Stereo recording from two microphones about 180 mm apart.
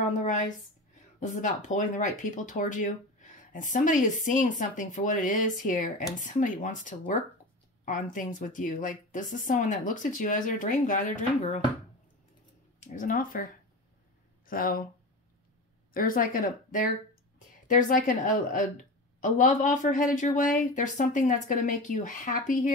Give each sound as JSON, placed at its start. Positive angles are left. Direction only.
{"t": 0.2, "sound": "a sound", "side_deg": 45}
{"t": 1.2, "sound": "a woman's voice", "side_deg": 45}
{"t": 12.8, "sound": "a woman's voice", "side_deg": 45}
{"t": 15.9, "sound": "a woman's voice", "side_deg": 50}